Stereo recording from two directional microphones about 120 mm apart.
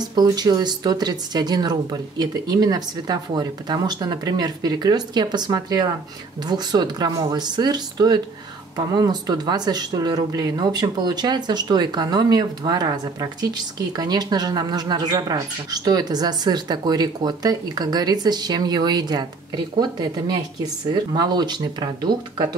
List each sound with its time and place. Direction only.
0.0 s speech: 35° right (ahead or behind)